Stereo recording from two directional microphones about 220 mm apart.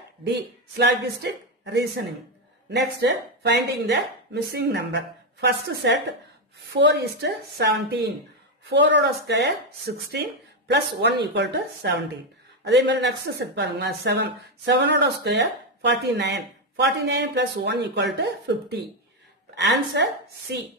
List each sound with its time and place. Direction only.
0.2 s speech: 50° right (ahead or behind)
3.0 s a woman's voice: 50° right (ahead or behind)